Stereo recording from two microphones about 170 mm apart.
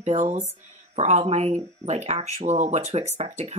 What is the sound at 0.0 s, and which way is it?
Speech, 40° right (ahead or behind).